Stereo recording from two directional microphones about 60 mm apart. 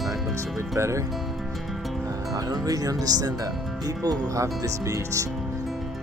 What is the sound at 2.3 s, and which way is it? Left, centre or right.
Speech, right.